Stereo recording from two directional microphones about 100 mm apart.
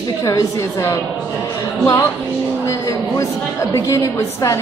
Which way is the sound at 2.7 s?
30° left (ahead or behind).